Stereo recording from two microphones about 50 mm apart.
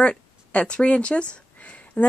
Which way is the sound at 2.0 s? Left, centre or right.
Left.